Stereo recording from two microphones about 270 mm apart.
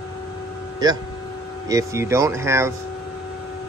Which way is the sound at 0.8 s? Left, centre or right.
Centre.